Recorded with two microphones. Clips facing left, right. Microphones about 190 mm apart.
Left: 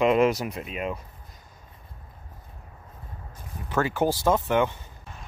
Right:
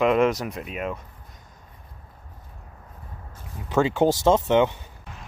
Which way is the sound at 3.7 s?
20° right (ahead or behind).